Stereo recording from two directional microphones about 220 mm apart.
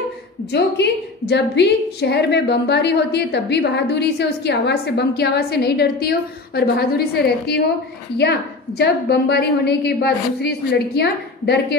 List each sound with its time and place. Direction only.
0.5 s a woman's voice: 50° left (ahead or behind)